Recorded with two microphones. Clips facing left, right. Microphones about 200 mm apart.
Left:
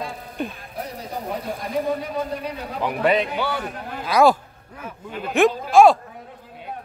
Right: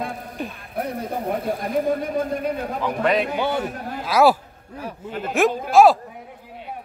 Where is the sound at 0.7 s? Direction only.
55° right (ahead or behind).